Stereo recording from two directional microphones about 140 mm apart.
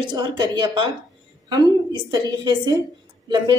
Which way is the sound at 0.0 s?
35° right (ahead or behind).